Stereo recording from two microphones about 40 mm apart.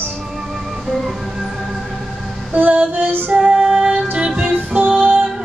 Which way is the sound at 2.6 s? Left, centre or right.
Right.